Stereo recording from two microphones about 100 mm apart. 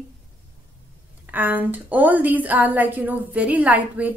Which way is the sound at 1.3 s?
15° right (ahead or behind).